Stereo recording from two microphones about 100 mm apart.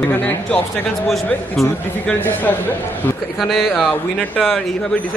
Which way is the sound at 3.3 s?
Centre (ahead or behind).